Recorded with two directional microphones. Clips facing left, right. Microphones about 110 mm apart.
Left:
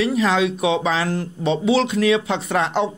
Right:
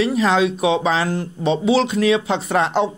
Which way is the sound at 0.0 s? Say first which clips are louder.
Right 2 dB; 30° right (ahead or behind).